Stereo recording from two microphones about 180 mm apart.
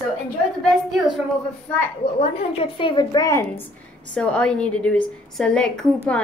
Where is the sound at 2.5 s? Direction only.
30° left (ahead or behind).